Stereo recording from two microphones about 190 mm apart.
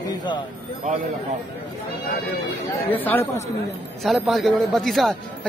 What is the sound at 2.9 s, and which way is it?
A man's voice, 10° left (ahead or behind).